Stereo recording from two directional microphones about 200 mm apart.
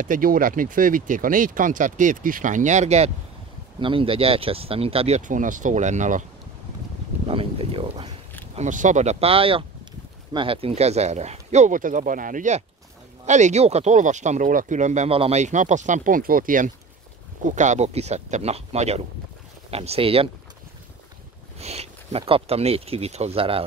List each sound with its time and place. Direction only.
0.0 s speech: 45° right (ahead or behind)
7.2 s speech: 30° right (ahead or behind)
8.5 s speech: 40° right (ahead or behind)
21.5 s speech: 30° right (ahead or behind)